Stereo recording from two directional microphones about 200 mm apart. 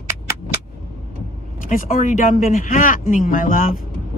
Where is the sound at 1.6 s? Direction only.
40° left (ahead or behind).